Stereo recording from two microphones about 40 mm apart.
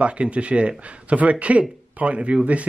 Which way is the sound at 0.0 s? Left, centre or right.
Right.